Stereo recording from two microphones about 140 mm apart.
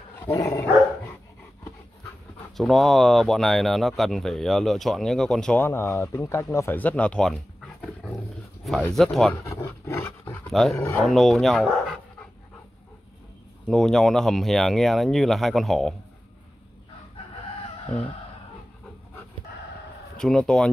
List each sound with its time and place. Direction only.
0.2 s dog: 25° left (ahead or behind)
2.5 s speech: centre (ahead or behind)
5.6 s speech: 15° left (ahead or behind)
8.9 s speech: centre (ahead or behind)
9.4 s dog: 20° left (ahead or behind)
10.5 s speech: centre (ahead or behind)
13.7 s speech: 5° left (ahead or behind)
17.9 s speech: 10° left (ahead or behind)
20.2 s speech: 5° left (ahead or behind)